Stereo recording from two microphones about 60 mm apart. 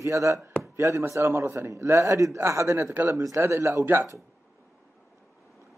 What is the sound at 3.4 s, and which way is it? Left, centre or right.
Speech, right.